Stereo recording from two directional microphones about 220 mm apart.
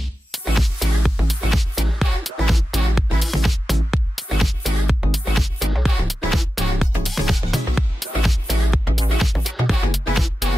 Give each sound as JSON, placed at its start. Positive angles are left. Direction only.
{"t": 0.3, "sound": "music", "side_deg": 0}